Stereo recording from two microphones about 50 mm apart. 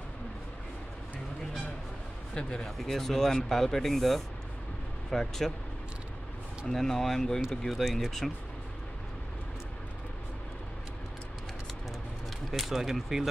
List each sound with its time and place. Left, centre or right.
2.3 s speech: centre
6.7 s speech: centre
12.4 s speech: centre